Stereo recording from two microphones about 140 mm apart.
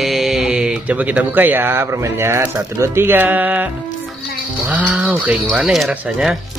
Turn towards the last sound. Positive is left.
turn(degrees=0)  # may be behind; listen again after turning